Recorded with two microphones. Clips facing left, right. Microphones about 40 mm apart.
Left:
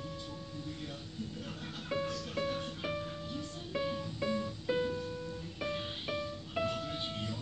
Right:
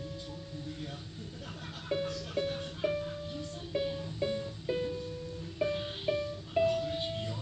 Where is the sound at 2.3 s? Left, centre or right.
Centre.